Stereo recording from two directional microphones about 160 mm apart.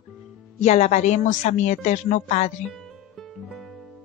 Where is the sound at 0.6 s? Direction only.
45° left (ahead or behind).